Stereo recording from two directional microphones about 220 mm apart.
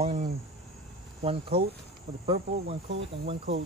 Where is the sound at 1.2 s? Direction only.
25° right (ahead or behind).